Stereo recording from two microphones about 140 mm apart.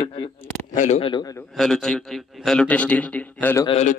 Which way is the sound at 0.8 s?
55° left (ahead or behind).